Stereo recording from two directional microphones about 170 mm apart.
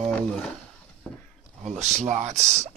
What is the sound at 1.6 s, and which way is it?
Speech, 40° right (ahead or behind).